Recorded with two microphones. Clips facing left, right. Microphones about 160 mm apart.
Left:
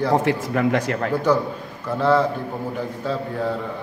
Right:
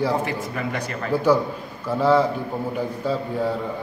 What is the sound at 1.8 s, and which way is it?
Speech, 10° right (ahead or behind).